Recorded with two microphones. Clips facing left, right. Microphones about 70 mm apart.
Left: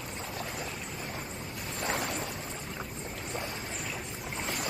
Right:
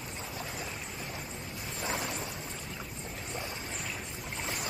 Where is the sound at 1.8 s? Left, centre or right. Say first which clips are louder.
Left 2 dB; left.